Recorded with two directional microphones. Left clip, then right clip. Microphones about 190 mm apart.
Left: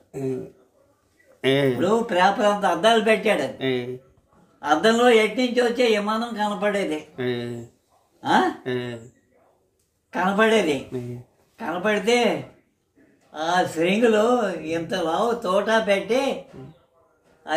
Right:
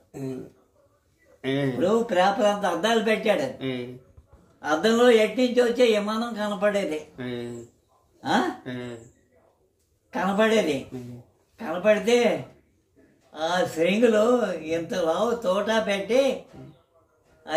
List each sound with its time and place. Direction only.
1.4 s speech: 45° left (ahead or behind)
1.8 s speech: 20° left (ahead or behind)
4.6 s speech: 10° left (ahead or behind)
7.2 s speech: 45° left (ahead or behind)
8.2 s speech: 10° left (ahead or behind)
8.6 s speech: 45° left (ahead or behind)
10.1 s speech: 10° left (ahead or behind)